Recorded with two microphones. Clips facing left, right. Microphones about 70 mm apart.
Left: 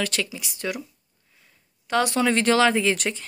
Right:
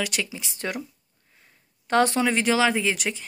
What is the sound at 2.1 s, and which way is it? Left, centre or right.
Speech, centre.